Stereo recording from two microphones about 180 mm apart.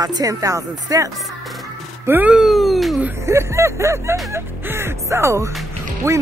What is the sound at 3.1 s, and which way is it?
Speech, 15° right (ahead or behind).